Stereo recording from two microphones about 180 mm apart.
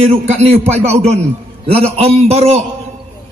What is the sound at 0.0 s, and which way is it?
A man's voice, 35° right (ahead or behind).